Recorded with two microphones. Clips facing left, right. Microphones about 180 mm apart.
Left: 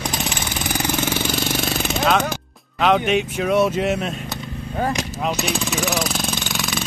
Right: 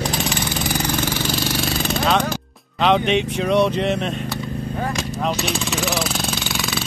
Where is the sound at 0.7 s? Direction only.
15° left (ahead or behind).